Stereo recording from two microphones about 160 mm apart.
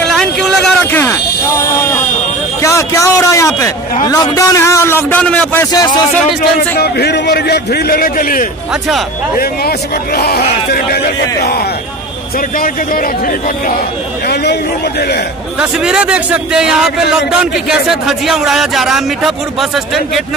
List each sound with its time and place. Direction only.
0.1 s a sound: centre (ahead or behind); by 3.7 s 20° left (ahead or behind)
4.0 s a man's voice: 25° left (ahead or behind)
6.8 s a man's voice: 85° left; by 8.5 s 60° left (ahead or behind)
9.4 s a man's voice: 70° left (ahead or behind)
12.5 s speech: 60° left (ahead or behind)
14.2 s speech: 90° left
15.6 s a man's voice: 5° right (ahead or behind)